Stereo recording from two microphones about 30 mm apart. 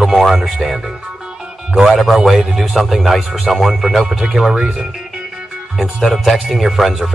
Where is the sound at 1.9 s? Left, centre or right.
Centre.